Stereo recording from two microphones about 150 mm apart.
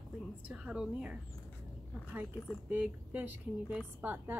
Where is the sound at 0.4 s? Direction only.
10° right (ahead or behind).